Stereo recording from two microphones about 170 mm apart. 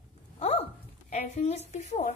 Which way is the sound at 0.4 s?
40° left (ahead or behind).